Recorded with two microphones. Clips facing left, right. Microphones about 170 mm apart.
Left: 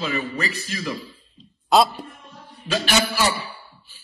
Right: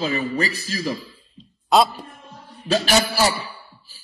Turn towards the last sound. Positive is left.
turn(degrees=-40)  # may be behind; listen again after turning